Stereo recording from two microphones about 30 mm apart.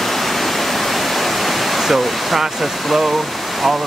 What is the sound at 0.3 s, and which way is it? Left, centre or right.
Pink noise, centre.